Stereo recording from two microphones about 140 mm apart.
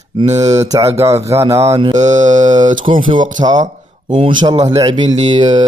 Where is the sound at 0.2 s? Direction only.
50° right (ahead or behind).